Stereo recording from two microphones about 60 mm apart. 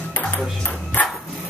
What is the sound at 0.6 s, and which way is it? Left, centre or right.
Ping, left.